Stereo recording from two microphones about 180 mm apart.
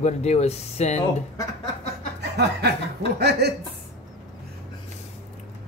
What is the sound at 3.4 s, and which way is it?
Speech, 65° right (ahead or behind).